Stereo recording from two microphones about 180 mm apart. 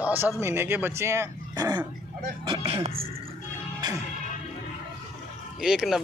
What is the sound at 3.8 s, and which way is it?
Music, 25° right (ahead or behind).